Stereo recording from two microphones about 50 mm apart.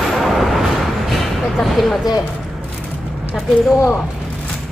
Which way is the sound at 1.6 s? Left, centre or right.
Centre.